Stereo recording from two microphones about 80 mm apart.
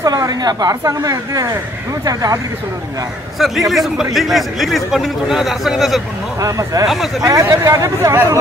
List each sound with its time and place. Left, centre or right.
0.0 s a woman's voice: right
3.3 s a man's voice: centre
6.4 s a woman's voice: right
6.9 s a man's voice: centre
7.4 s speech: right